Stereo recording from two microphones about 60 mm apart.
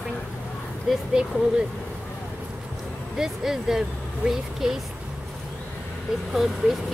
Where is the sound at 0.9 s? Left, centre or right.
Centre.